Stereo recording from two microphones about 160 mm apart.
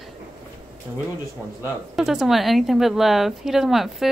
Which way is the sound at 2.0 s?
Centre (ahead or behind).